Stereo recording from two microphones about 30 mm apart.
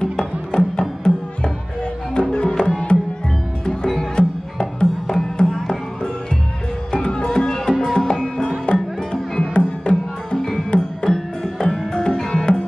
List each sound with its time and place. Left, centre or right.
0.5 s music: left
2.1 s music: left
4.2 s music: left
6.9 s music: left
11.1 s music: centre
12.0 s music: left